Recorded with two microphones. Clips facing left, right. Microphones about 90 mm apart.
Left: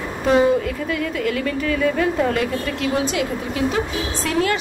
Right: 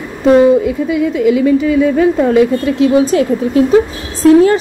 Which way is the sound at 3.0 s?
35° right (ahead or behind).